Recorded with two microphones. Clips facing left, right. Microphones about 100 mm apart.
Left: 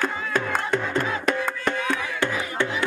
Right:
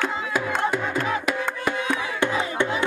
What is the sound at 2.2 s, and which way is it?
Music, 20° right (ahead or behind).